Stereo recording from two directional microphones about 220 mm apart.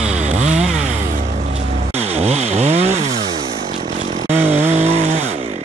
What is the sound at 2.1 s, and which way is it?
Chainsaw, 30° right (ahead or behind).